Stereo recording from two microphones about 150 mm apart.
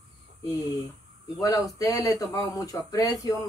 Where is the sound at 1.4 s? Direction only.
25° left (ahead or behind).